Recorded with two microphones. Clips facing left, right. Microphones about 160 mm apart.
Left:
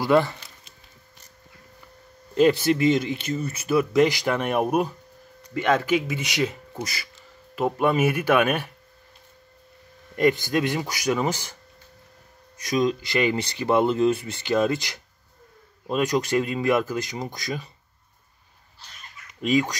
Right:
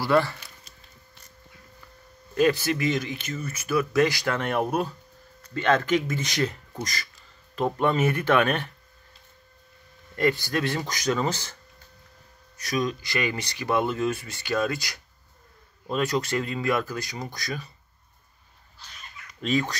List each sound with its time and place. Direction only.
0.0 s speech: 20° left (ahead or behind)
2.3 s speech: 25° left (ahead or behind)
10.1 s speech: 20° left (ahead or behind)
12.6 s speech: 25° left (ahead or behind)
19.4 s speech: 15° left (ahead or behind)